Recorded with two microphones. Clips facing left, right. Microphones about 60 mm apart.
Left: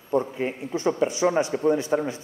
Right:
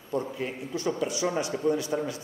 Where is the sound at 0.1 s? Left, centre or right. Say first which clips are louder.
Left 6 dB; left.